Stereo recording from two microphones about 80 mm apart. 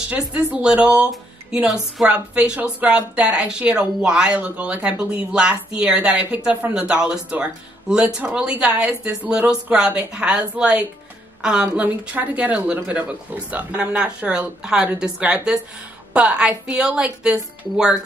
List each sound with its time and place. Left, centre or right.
0.1 s a woman's voice: centre